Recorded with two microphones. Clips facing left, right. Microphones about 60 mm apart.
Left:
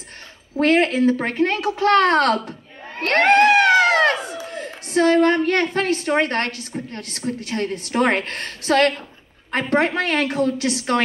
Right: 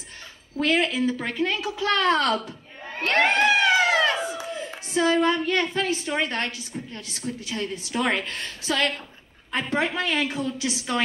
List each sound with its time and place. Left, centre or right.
0.6 s a woman's voice: left
3.1 s crowd: left
4.5 s a woman's voice: left